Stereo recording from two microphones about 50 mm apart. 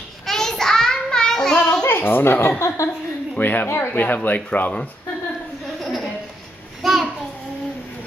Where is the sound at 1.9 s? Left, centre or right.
Left.